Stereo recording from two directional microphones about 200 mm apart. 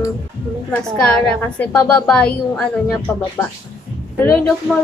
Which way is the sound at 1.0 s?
5° left (ahead or behind).